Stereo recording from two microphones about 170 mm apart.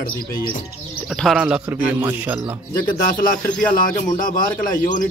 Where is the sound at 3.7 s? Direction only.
55° left (ahead or behind).